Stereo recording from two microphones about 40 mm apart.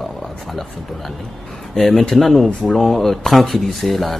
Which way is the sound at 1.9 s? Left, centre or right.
Centre.